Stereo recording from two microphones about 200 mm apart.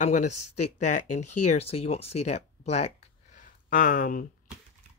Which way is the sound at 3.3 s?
45° left (ahead or behind).